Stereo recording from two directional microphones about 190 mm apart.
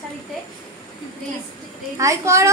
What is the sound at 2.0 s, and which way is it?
Speech, 15° right (ahead or behind).